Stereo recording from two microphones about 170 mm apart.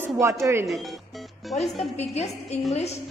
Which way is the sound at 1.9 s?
40° left (ahead or behind).